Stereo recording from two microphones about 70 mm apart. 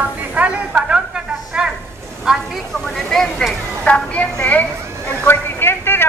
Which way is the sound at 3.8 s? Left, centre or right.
Centre.